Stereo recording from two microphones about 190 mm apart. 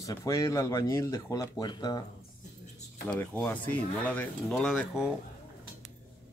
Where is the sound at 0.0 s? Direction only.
15° left (ahead or behind).